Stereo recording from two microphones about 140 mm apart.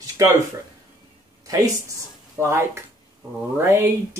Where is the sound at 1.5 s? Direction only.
25° right (ahead or behind).